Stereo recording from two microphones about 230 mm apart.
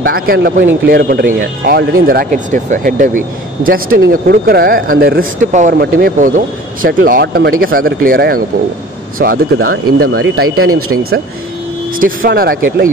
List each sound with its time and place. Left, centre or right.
0.0 s speech: right
10.6 s speech: right
12.0 s speech: right